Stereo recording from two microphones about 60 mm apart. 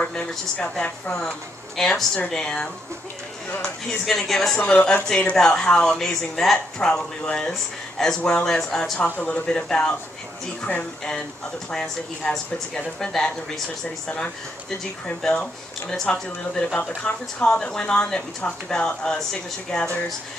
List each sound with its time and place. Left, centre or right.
0.0 s a woman's voice: left
1.8 s speech: centre
4.0 s speech: centre